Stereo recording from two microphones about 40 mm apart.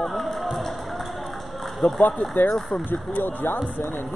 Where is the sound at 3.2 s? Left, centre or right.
Left.